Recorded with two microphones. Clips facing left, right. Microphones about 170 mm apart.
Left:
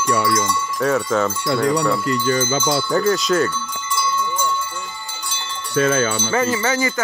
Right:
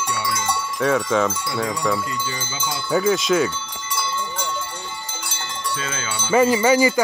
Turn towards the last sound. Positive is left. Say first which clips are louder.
# right 4 dB
turn(degrees=-15)  # may be behind; listen again after turning